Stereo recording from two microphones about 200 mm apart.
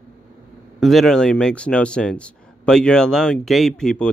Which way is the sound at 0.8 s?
Centre (ahead or behind).